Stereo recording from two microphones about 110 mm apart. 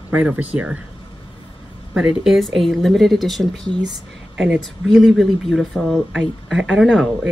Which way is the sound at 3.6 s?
40° right (ahead or behind).